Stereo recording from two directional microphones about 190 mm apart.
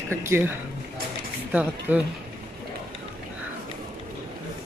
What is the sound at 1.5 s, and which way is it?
Speech, 10° right (ahead or behind).